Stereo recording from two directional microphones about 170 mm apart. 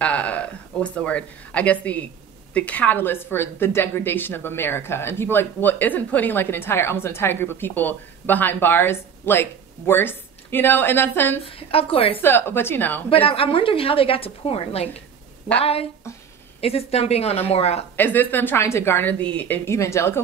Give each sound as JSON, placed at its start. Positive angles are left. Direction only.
{"t": 0.0, "sound": "a woman's voice", "side_deg": 10}
{"t": 11.4, "sound": "a woman's voice", "side_deg": 35}
{"t": 12.2, "sound": "a woman's voice", "side_deg": 15}
{"t": 13.1, "sound": "a woman's voice", "side_deg": 35}
{"t": 17.9, "sound": "a woman's voice", "side_deg": 10}